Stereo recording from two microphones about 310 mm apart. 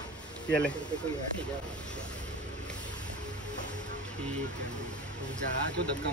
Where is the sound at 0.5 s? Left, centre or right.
Centre.